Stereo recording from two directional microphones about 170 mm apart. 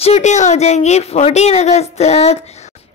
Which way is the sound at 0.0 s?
40° left (ahead or behind).